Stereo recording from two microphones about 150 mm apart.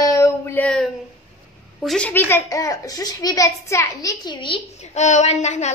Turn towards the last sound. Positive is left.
turn(degrees=50)  # may be behind; listen again after turning